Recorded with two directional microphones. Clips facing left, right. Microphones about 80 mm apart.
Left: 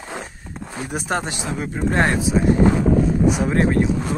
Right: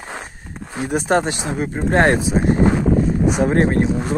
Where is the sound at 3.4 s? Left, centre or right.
Right.